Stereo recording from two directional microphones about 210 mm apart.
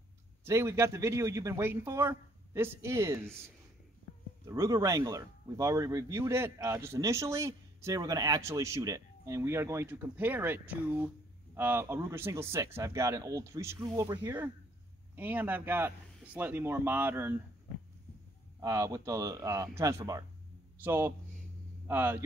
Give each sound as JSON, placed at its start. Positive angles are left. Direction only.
{"t": 0.5, "sound": "speech", "side_deg": -15}
{"t": 4.5, "sound": "speech", "side_deg": -15}
{"t": 18.6, "sound": "speech", "side_deg": -15}